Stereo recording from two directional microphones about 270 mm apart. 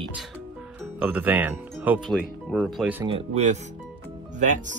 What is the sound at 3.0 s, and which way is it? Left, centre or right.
Speech, right.